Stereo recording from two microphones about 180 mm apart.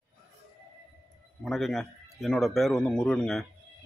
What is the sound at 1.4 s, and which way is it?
A man's voice, centre (ahead or behind).